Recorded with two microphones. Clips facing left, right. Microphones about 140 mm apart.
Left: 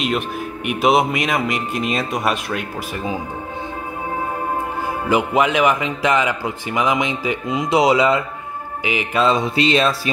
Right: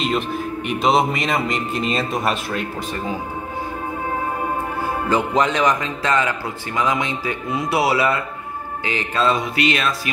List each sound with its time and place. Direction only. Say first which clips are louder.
0.7 s speech: left 2 dB; 5° left (ahead or behind)
5.1 s a man's voice: left 2 dB; 10° left (ahead or behind)
8.8 s music: left 2 dB; 15° left (ahead or behind)